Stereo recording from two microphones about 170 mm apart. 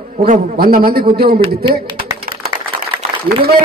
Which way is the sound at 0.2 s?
60° right (ahead or behind).